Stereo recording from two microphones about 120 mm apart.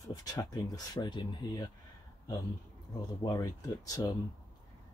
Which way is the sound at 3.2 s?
30° left (ahead or behind).